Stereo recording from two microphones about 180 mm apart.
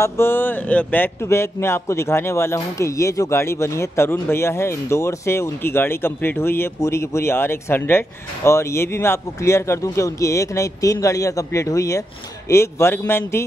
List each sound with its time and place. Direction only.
0.0 s speech: 10° left (ahead or behind)